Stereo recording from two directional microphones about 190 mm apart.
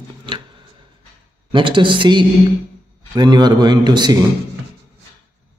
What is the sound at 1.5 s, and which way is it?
Speech, 25° right (ahead or behind).